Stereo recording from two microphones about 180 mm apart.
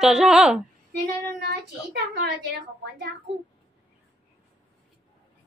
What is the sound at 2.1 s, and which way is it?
Speech, 70° right (ahead or behind).